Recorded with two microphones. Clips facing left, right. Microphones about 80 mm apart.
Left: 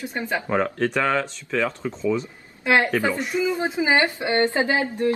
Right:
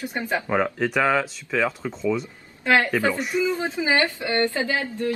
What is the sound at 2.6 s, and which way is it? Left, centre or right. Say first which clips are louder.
A woman's voice: even; centre.